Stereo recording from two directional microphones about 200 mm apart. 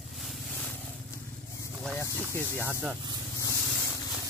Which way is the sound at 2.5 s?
10° right (ahead or behind).